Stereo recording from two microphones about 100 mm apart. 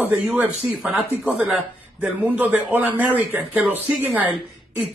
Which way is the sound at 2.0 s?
15° right (ahead or behind).